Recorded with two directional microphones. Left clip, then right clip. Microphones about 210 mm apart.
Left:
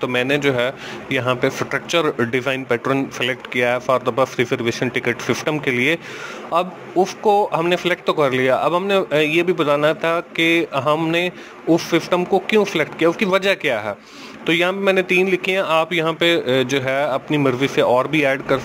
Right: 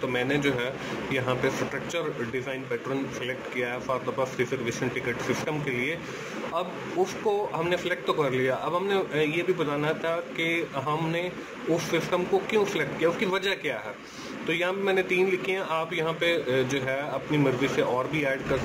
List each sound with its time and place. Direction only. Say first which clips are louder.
0.0 s speech: left 8 dB; 45° left (ahead or behind)